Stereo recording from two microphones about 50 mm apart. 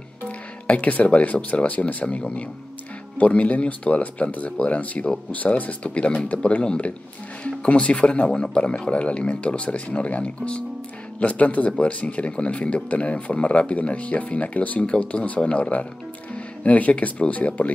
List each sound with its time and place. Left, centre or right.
0.7 s speech: left